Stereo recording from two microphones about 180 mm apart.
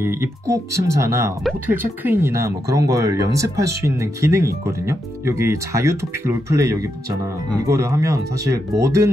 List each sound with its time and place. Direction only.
0.0 s speech: 15° right (ahead or behind)